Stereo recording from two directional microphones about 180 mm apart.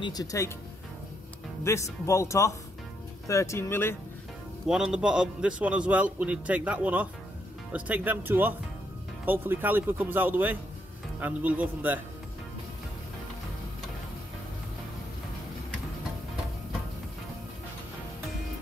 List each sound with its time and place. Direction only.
0.0 s speech: 20° left (ahead or behind)
1.6 s speech: 15° left (ahead or behind)
4.6 s a man's voice: 5° right (ahead or behind)